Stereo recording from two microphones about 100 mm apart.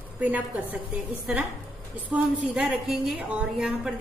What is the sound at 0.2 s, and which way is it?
Speech, 15° right (ahead or behind).